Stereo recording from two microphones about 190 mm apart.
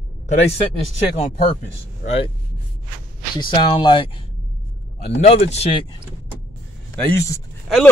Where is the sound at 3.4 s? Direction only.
25° left (ahead or behind).